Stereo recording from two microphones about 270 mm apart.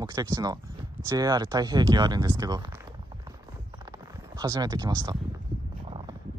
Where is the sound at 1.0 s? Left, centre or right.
Centre.